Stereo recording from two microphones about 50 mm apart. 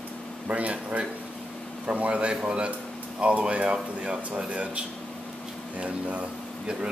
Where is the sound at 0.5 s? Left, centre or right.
Right.